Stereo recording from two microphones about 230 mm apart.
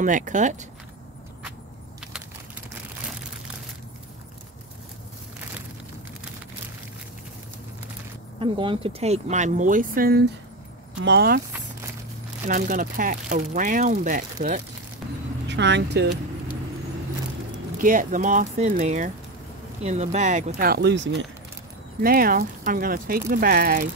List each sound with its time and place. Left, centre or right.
0.0 s speech: right
8.4 s speech: right
12.4 s speech: right
15.0 s vehicle: centre
15.4 s speech: right
17.7 s speech: right
22.0 s speech: right